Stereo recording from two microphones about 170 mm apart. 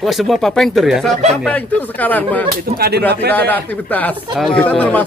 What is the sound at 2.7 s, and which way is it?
Speech, 70° right (ahead or behind).